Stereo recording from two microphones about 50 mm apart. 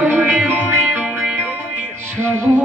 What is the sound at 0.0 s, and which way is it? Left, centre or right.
Music, right.